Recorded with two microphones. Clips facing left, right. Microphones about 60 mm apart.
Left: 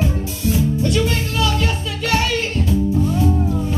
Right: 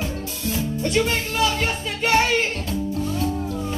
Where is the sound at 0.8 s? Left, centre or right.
Right.